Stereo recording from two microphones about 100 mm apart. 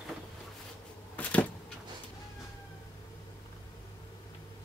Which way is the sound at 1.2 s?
15° left (ahead or behind).